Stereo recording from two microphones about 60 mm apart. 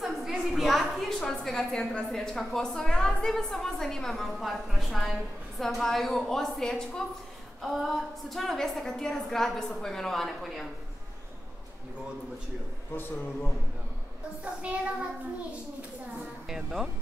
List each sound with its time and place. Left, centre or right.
0.0 s a sound: centre
2.0 s a woman's voice: centre
7.6 s a woman's voice: centre
14.4 s a child's voice: right
16.4 s a woman's voice: centre